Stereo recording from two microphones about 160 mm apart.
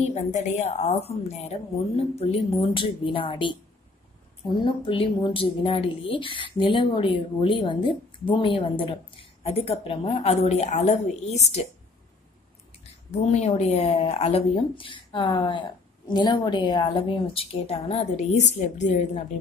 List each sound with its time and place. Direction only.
0.1 s speech: 45° left (ahead or behind)
13.1 s speech: 45° left (ahead or behind)